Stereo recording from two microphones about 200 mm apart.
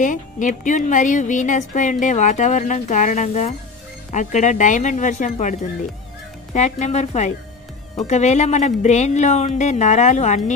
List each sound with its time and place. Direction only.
0.0 s a woman's voice: 40° left (ahead or behind)